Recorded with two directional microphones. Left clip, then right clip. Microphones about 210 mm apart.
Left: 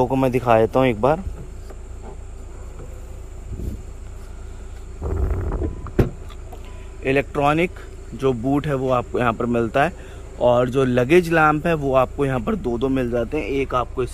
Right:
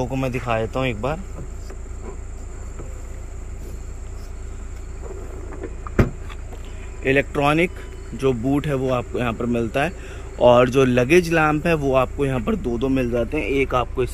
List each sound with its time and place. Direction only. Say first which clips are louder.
0.0 s speech: left 6 dB; 20° left (ahead or behind)
7.0 s speech: right 1 dB; 5° left (ahead or behind)